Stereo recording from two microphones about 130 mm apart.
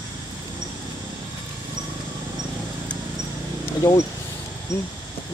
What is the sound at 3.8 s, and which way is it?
Speech, 30° left (ahead or behind).